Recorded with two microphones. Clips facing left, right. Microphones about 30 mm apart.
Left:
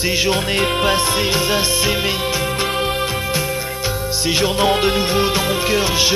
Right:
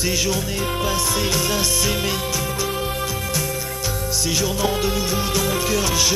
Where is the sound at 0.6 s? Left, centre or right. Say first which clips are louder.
Left 6 dB; left.